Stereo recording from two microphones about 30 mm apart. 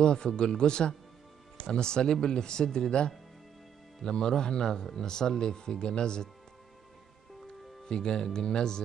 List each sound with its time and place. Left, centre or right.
0.0 s speech: left
4.0 s speech: left
7.8 s speech: left